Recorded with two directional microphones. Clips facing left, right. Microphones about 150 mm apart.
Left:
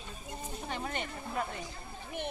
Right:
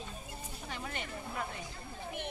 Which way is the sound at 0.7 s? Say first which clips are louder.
Left 4 dB; 35° left (ahead or behind).